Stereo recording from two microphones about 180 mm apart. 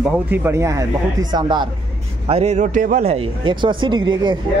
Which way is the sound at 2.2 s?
35° right (ahead or behind).